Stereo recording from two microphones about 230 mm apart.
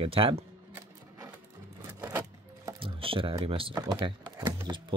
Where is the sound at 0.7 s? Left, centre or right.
Centre.